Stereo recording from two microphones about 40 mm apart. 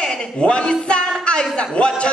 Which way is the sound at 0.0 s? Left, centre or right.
Left.